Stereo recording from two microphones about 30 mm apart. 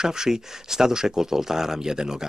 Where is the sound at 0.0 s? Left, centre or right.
Right.